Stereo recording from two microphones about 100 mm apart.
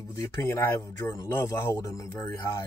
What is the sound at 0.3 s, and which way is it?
Speech, 30° left (ahead or behind).